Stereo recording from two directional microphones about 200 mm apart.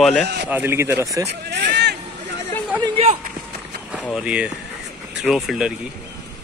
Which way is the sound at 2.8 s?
30° right (ahead or behind).